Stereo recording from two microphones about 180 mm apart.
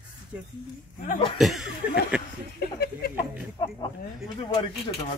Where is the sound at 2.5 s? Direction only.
60° left (ahead or behind).